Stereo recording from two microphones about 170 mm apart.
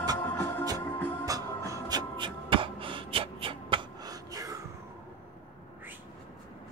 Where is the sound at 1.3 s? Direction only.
20° right (ahead or behind).